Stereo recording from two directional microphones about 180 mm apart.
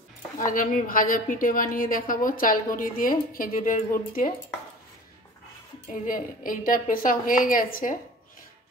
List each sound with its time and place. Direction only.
0.5 s a woman's voice: 50° left (ahead or behind)
6.0 s a woman's voice: 50° left (ahead or behind)